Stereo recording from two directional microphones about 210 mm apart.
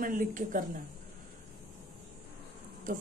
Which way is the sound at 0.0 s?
40° right (ahead or behind).